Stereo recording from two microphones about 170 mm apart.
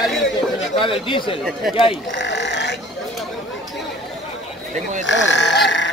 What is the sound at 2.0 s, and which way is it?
Sheep, 90° left.